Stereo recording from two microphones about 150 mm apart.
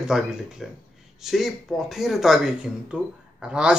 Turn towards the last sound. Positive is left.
turn(degrees=-5)  # may be behind; listen again after turning